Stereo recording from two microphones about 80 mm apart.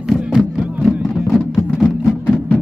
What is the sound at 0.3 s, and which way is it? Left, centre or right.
Music, centre.